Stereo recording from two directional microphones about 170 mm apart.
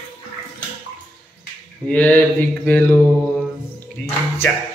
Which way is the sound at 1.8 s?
10° left (ahead or behind).